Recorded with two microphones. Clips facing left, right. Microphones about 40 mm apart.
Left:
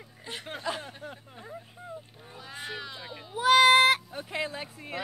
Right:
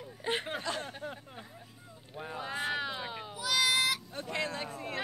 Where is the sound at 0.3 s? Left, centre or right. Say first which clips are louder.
Right 7 dB; right.